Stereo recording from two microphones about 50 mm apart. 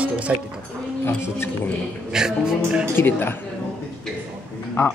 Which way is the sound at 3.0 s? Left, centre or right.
Left.